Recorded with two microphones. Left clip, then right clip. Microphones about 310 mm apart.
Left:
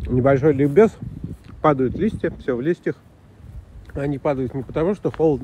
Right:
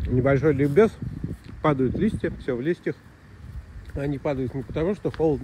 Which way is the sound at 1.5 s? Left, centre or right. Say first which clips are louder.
Left 5 dB; centre.